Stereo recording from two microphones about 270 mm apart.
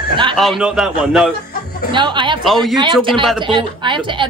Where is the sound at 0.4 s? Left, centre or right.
Centre.